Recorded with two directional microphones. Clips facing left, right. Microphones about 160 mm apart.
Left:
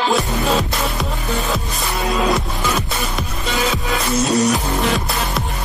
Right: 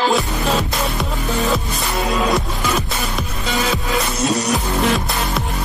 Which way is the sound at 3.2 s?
Centre (ahead or behind).